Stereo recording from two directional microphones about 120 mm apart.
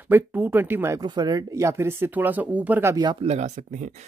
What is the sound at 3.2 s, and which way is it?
Speech, 70° right (ahead or behind).